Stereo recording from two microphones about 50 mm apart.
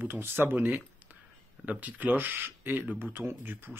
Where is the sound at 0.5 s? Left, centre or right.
Right.